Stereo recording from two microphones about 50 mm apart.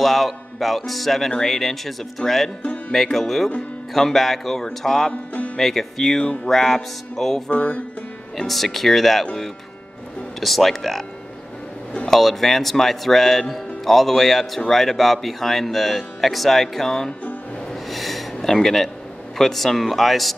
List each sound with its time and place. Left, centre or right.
0.0 s speech: centre
5.1 s music: left
5.6 s speech: centre
6.2 s music: centre
6.5 s speech: centre
7.5 s music: left
8.4 s speech: centre
12.1 s speech: centre
17.8 s a sound: centre
19.3 s speech: centre